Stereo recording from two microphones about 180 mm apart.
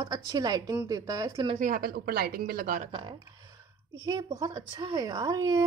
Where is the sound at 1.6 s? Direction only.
55° right (ahead or behind).